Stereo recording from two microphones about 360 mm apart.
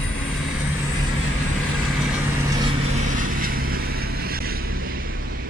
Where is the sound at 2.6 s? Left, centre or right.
Centre.